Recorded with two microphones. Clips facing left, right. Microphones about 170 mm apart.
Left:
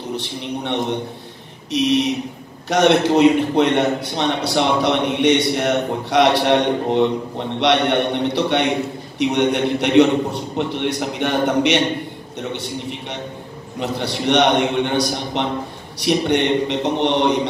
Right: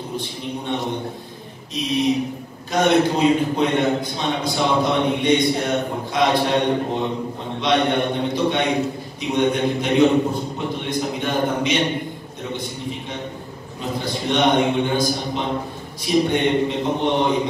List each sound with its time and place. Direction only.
0.1 s a man's voice: 80° left
1.7 s a sound: 80° left
2.7 s a man's voice: 75° left (ahead or behind)